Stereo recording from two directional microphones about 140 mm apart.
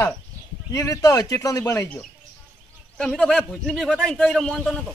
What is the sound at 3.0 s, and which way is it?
A man's voice, 5° left (ahead or behind).